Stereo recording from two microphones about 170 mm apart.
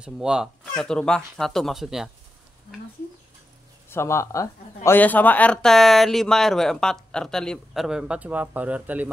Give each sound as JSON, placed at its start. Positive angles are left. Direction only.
{"t": 0.0, "sound": "speech", "side_deg": -5}
{"t": 3.9, "sound": "speech", "side_deg": 15}